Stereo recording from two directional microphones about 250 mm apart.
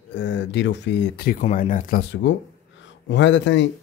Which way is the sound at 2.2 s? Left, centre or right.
Left.